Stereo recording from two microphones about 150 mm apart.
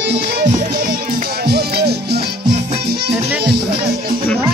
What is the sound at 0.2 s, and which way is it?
Music, 90° right.